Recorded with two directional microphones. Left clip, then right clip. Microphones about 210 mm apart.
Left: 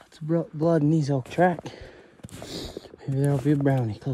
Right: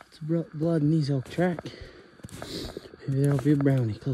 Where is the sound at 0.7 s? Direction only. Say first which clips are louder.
Left 3 dB; 5° right (ahead or behind).